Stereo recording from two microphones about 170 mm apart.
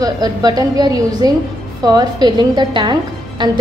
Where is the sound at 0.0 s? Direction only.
25° right (ahead or behind).